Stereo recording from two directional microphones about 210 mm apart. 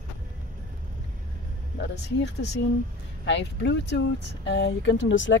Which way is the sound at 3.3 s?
55° left (ahead or behind).